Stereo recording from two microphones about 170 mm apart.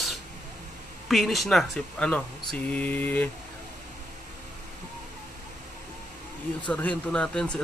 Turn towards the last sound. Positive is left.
turn(degrees=5)  # may be behind; listen again after turning